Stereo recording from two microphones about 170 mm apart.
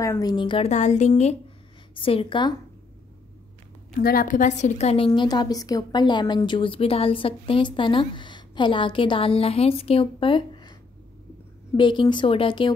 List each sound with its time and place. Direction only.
0.0 s speech: 20° left (ahead or behind)
0.7 s a woman's voice: 45° left (ahead or behind); by 2.5 s 30° left (ahead or behind)
3.9 s a woman's voice: 55° left (ahead or behind); by 12.7 s 30° left (ahead or behind)